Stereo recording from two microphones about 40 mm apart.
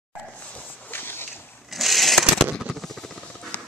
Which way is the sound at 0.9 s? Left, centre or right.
Left.